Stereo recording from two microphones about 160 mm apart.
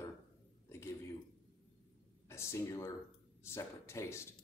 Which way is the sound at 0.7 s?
15° left (ahead or behind).